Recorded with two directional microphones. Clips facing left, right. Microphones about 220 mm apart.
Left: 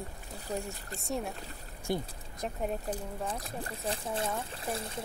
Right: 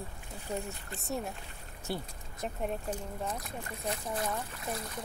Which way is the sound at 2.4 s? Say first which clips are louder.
Left 1 dB; centre (ahead or behind).